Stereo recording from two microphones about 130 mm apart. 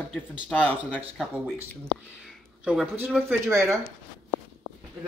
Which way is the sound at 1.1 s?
5° right (ahead or behind).